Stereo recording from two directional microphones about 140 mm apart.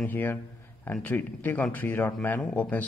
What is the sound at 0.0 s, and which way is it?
Speech, 15° left (ahead or behind).